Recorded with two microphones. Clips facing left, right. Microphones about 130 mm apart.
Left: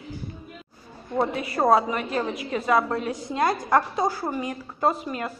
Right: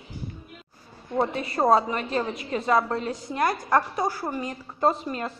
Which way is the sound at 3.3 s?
20° left (ahead or behind).